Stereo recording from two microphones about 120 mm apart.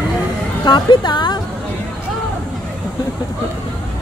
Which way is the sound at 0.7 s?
40° left (ahead or behind).